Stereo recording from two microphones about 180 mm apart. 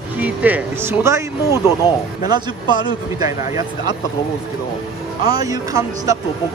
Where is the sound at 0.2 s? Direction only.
10° right (ahead or behind).